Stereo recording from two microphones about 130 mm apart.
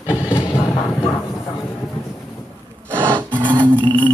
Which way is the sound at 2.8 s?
15° right (ahead or behind).